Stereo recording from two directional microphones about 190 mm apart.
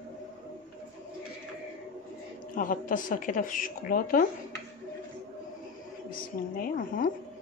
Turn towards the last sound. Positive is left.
turn(degrees=45)  # may be behind; listen again after turning